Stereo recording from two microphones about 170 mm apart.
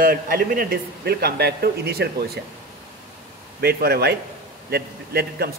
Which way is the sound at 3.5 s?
70° right (ahead or behind).